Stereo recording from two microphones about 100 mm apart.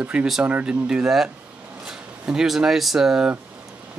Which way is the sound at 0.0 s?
10° right (ahead or behind).